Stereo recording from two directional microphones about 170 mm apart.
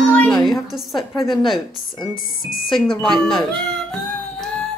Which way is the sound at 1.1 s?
30° left (ahead or behind).